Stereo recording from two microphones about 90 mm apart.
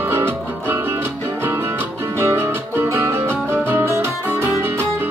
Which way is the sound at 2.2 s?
30° right (ahead or behind).